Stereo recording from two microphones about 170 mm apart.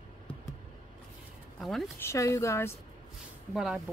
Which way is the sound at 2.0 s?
15° left (ahead or behind).